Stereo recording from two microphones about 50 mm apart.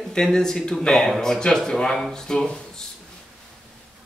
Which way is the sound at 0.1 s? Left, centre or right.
Centre.